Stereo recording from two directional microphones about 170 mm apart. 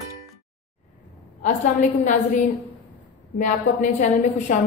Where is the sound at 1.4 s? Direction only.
50° left (ahead or behind).